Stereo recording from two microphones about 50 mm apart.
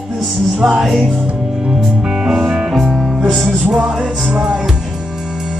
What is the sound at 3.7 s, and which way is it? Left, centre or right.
Music, centre.